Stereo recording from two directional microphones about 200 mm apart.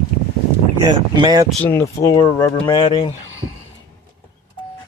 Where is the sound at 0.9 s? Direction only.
20° right (ahead or behind).